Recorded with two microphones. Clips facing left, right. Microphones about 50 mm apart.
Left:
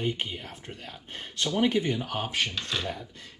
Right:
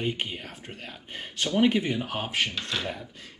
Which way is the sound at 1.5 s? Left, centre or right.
Right.